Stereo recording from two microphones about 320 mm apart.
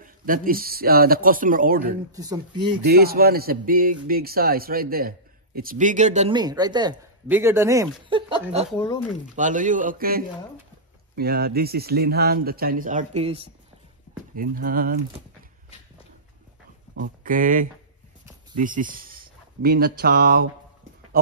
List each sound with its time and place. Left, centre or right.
0.0 s a man's voice: right
2.1 s speech: centre
2.8 s a man's voice: right
17.0 s a man's voice: right